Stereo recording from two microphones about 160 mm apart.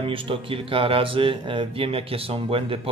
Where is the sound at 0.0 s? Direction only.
35° right (ahead or behind).